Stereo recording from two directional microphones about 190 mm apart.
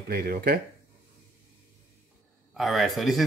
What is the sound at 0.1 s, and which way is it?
Speech, 50° right (ahead or behind).